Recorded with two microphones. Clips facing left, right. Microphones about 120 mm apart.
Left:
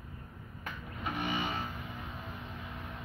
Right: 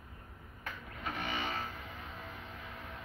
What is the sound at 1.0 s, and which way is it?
Music, 15° left (ahead or behind).